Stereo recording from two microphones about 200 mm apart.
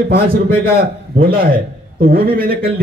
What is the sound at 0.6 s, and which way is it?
A man's voice, 50° right (ahead or behind).